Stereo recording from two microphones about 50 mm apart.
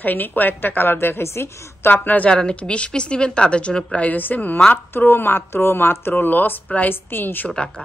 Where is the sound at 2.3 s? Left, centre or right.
Centre.